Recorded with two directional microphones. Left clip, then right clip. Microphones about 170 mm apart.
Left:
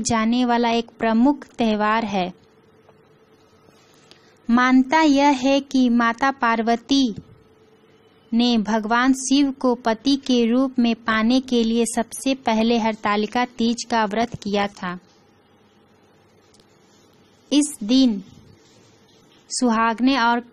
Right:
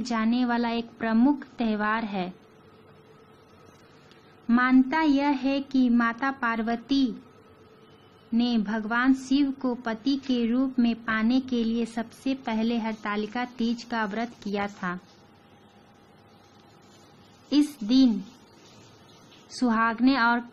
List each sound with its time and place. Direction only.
0.0 s a woman's voice: 45° left (ahead or behind)
4.5 s a woman's voice: 40° left (ahead or behind)
8.4 s a woman's voice: 50° left (ahead or behind)
17.5 s speech: 35° left (ahead or behind)
19.5 s speech: 35° left (ahead or behind)